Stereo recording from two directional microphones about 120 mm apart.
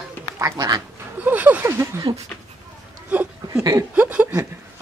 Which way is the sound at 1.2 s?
15° right (ahead or behind).